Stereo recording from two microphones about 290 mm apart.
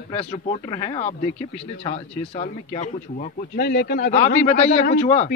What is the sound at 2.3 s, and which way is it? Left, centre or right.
Speech, left.